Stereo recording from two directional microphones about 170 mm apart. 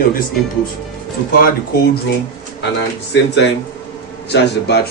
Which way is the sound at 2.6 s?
90° left.